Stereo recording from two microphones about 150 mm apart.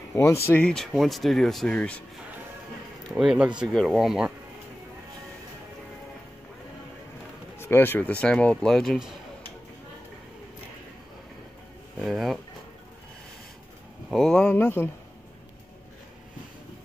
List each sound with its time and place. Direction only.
0.1 s speech: 20° left (ahead or behind)
3.2 s speech: 5° right (ahead or behind)
7.5 s speech: 15° left (ahead or behind)
12.0 s speech: centre (ahead or behind)
14.1 s speech: 5° left (ahead or behind)
14.5 s speech: 15° left (ahead or behind)